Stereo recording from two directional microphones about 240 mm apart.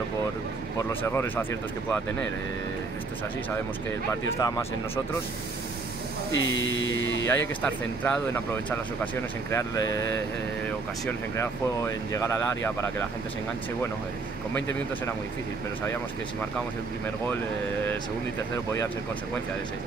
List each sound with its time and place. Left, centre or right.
0.7 s speech: centre
4.4 s speech: centre
6.3 s speech: left
7.2 s speech: centre